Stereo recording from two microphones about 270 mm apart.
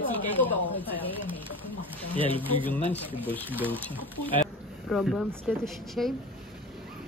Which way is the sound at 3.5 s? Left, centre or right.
Centre.